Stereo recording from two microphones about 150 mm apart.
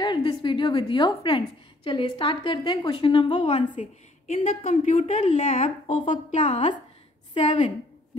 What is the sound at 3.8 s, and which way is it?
A woman's voice, 55° left (ahead or behind).